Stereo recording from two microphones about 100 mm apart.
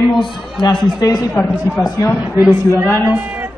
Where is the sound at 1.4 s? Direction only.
20° left (ahead or behind).